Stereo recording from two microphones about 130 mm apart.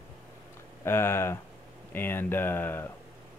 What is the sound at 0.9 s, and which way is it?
Speech, 20° left (ahead or behind).